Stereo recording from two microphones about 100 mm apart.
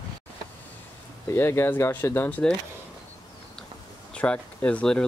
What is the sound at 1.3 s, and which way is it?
Speech, 25° left (ahead or behind).